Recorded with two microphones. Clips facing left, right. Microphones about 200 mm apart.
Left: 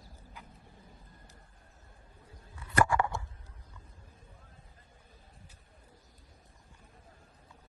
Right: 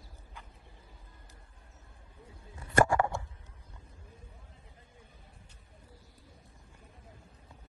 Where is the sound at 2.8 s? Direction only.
45° right (ahead or behind).